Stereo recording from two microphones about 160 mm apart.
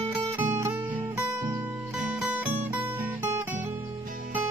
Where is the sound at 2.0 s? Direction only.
10° right (ahead or behind).